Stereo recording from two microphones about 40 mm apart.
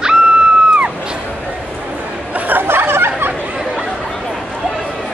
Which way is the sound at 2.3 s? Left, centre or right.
Right.